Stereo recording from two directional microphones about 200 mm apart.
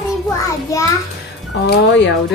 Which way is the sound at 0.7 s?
15° left (ahead or behind).